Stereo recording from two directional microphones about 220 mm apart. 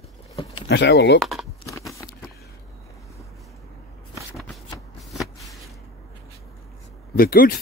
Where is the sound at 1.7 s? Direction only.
15° left (ahead or behind).